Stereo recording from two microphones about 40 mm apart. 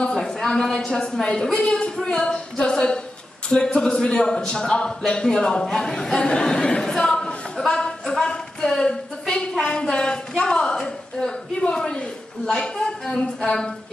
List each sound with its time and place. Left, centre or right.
0.0 s a sound: centre
0.4 s speech: centre
2.0 s a capella: left
3.4 s speech: centre
11.6 s a capella: left
12.4 s speech: centre